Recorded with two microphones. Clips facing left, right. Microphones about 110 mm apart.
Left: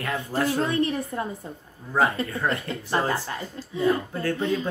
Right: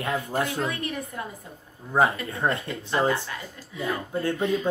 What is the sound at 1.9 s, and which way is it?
Speech, 20° right (ahead or behind).